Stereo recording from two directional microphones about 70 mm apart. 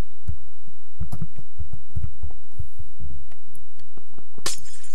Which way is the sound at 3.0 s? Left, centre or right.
Left.